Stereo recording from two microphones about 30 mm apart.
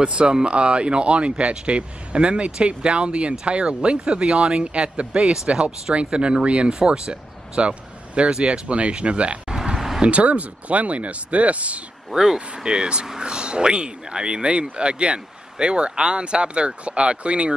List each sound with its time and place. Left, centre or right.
0.0 s speech: right
9.5 s a sound: right
10.0 s speech: right
12.1 s speech: centre
12.4 s speech: right